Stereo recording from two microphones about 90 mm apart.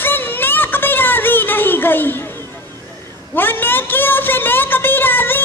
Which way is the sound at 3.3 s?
20° left (ahead or behind).